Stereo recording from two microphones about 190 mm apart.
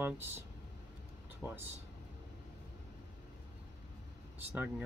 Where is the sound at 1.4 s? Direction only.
5° left (ahead or behind).